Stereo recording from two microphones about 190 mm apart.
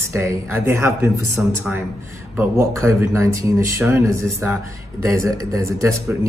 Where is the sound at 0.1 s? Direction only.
15° right (ahead or behind).